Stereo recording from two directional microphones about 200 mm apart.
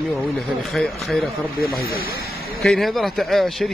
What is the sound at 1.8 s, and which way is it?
Speech, 50° left (ahead or behind).